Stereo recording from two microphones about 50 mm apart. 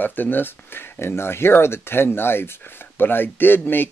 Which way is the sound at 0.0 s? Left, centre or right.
Left.